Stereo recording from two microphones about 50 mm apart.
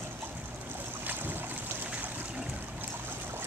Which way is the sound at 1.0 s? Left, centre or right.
Right.